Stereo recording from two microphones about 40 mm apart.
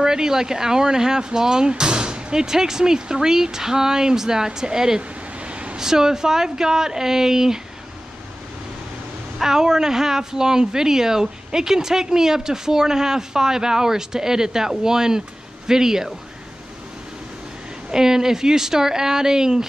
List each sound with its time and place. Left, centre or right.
0.0 s speech: centre
5.4 s a sound: right
5.8 s speech: centre
9.4 s speech: centre
17.9 s speech: centre